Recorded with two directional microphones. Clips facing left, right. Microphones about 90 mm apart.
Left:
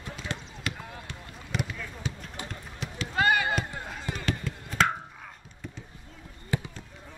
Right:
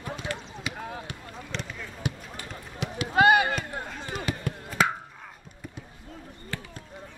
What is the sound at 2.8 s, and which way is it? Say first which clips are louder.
Run: right 6 dB; 15° right (ahead or behind).